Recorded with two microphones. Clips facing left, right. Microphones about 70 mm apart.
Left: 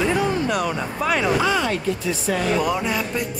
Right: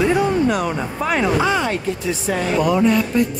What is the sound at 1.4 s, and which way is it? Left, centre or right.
Speech, right.